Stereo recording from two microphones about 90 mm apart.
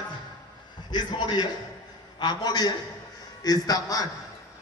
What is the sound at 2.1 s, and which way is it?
A man's voice, 50° left (ahead or behind).